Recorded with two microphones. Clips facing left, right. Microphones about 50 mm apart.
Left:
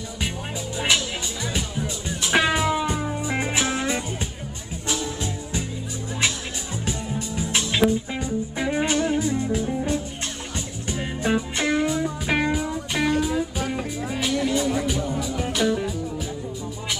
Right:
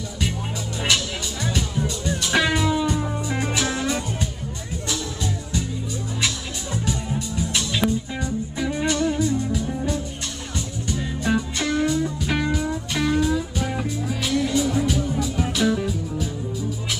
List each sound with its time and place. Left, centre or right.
0.7 s music: centre
11.2 s music: left; by 16.3 s centre